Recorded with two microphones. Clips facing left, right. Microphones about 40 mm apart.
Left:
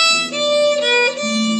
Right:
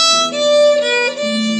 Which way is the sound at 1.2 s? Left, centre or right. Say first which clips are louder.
Right 2 dB; centre.